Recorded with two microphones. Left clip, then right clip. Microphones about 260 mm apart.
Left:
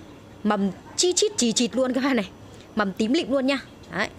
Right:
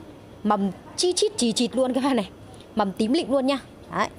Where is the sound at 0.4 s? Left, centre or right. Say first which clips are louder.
Right 1 dB; centre.